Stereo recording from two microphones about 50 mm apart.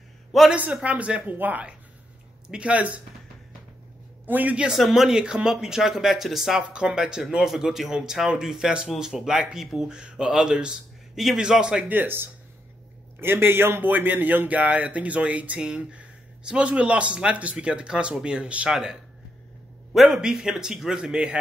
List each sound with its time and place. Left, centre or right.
0.3 s a man's voice: centre
0.8 s speech: right
2.4 s speech: centre
2.7 s speech: right
4.3 s a man's voice: right
4.7 s speech: centre
5.2 s a man's voice: centre
6.7 s a man's voice: centre
9.9 s a man's voice: centre
11.1 s speech: centre
11.9 s speech: right
18.7 s a man's voice: centre